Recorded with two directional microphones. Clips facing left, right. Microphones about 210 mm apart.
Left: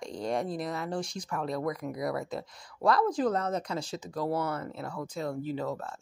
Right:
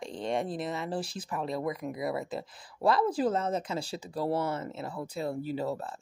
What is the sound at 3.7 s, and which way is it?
Speech, 30° right (ahead or behind).